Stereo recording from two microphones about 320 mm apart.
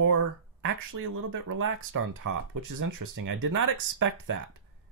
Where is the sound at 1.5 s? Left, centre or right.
Right.